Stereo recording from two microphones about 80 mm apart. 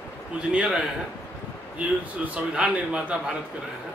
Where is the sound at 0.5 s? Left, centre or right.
Centre.